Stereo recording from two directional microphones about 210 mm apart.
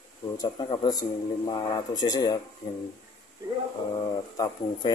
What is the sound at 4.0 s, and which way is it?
Speech, 20° left (ahead or behind).